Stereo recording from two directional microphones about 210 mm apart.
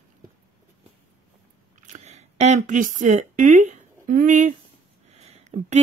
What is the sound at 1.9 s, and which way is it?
Speech, 30° right (ahead or behind).